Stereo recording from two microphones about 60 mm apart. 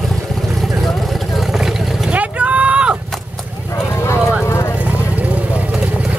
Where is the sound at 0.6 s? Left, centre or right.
Centre.